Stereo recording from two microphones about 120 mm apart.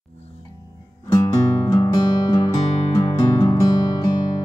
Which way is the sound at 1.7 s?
35° left (ahead or behind).